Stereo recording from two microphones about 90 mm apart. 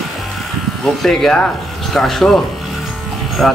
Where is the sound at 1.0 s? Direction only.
10° left (ahead or behind).